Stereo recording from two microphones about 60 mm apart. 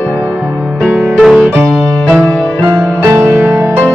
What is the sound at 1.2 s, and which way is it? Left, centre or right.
Music, centre.